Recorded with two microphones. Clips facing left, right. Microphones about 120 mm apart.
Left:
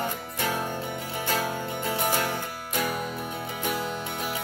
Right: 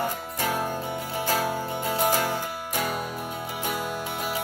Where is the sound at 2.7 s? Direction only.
25° right (ahead or behind).